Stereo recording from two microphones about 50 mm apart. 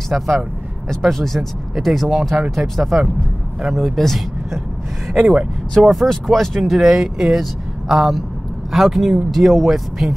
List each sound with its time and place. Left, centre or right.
0.1 s speech: right
0.8 s speech: centre
5.3 s speech: centre
5.9 s speech: centre